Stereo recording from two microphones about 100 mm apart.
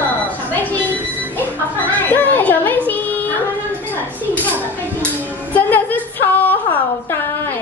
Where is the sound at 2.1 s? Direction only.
20° left (ahead or behind).